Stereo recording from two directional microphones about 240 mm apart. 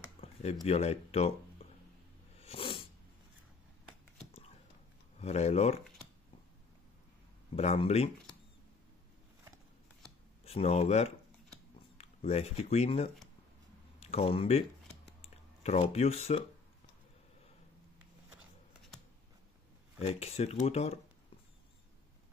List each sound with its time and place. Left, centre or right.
0.2 s a sound: left
0.7 s speech: left
2.4 s cat: left
5.2 s speech: left
7.5 s speech: left
10.4 s speech: left
20.0 s speech: left